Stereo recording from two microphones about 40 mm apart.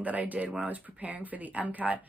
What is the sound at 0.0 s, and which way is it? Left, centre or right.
Speech, right.